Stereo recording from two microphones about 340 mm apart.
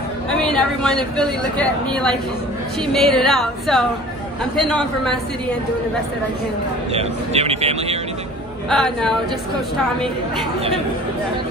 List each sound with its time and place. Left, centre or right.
0.3 s a sound: centre
1.1 s speech: centre
6.9 s speech: centre
8.6 s speech: centre